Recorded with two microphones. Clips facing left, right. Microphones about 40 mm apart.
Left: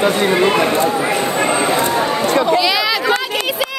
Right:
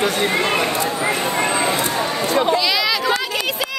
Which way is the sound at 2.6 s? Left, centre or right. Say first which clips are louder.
Left 3 dB; centre.